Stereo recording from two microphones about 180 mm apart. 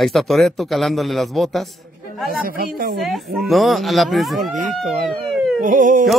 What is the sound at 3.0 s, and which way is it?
Speech, centre (ahead or behind).